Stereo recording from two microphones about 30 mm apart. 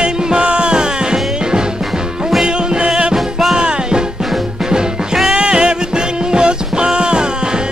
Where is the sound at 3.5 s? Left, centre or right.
Right.